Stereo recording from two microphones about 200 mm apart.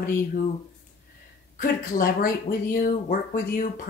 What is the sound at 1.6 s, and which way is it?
Speech, 45° left (ahead or behind).